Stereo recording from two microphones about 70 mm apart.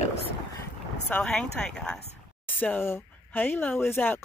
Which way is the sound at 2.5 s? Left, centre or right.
Left.